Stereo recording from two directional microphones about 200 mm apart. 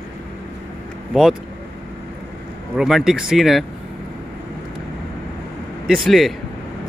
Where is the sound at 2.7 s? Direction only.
5° right (ahead or behind).